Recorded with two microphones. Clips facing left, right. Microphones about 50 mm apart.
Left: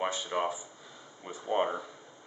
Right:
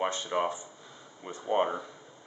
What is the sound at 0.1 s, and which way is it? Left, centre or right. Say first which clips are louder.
A man's voice: right 2 dB; centre.